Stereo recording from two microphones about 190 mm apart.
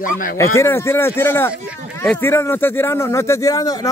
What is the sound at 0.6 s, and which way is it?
Speech, 15° left (ahead or behind).